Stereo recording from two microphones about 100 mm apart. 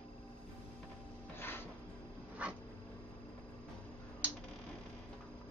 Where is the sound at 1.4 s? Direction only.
20° left (ahead or behind).